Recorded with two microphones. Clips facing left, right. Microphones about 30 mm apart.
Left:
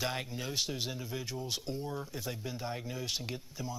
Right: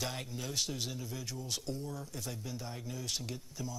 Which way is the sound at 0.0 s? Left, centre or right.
Left.